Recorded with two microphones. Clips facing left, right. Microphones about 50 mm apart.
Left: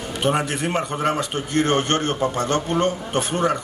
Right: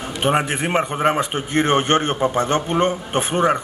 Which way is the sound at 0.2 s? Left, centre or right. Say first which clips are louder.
Right 2 dB; right.